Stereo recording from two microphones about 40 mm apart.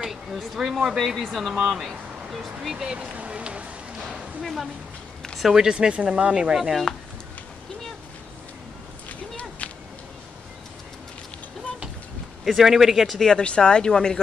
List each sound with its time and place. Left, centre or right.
0.0 s a sound: centre
0.6 s speech: centre
3.2 s run: right
4.4 s a woman's voice: centre
5.5 s speech: centre
12.4 s speech: centre
13.3 s speech: left